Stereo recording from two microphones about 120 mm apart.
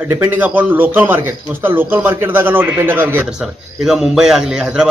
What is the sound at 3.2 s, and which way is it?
A man's voice, 5° right (ahead or behind).